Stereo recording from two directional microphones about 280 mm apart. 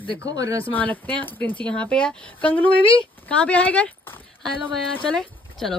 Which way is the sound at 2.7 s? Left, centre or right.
Centre.